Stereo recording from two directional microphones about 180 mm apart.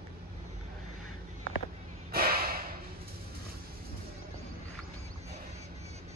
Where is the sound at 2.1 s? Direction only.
55° right (ahead or behind).